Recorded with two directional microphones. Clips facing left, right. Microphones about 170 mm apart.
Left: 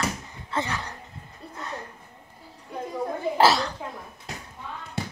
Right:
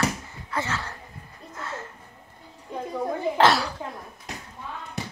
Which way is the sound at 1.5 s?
15° left (ahead or behind).